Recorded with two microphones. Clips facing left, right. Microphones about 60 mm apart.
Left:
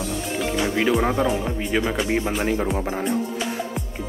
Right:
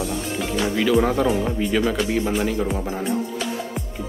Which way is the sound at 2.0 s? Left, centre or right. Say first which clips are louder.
Even; left.